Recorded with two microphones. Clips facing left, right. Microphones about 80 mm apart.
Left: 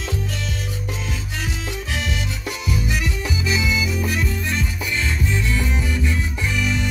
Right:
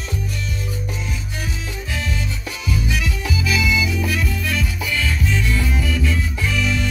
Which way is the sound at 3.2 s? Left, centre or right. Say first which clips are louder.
Right 1 dB; left.